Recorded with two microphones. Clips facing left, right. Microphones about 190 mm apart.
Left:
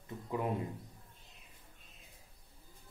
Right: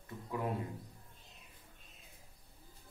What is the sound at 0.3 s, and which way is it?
Speech, 20° left (ahead or behind).